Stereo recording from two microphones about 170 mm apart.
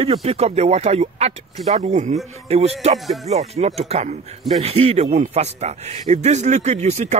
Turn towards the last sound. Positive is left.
turn(degrees=-40)  # may be behind; listen again after turning